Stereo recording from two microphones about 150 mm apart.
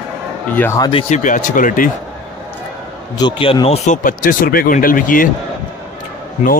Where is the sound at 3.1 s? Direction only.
35° left (ahead or behind).